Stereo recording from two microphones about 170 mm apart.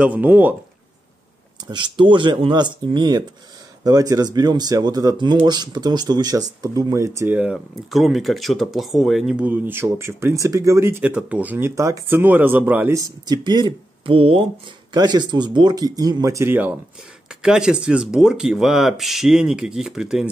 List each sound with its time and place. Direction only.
0.0 s speech: 10° right (ahead or behind)
1.7 s speech: 30° right (ahead or behind); by 7.5 s 10° right (ahead or behind)
7.5 s speech: centre (ahead or behind)